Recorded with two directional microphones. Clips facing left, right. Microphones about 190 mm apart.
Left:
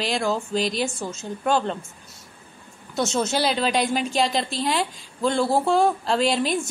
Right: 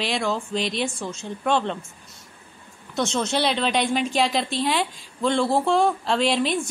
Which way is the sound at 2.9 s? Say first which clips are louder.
Left 1 dB; 5° left (ahead or behind).